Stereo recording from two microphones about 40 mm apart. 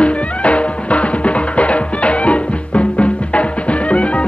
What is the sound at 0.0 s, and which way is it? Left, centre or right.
Music, left.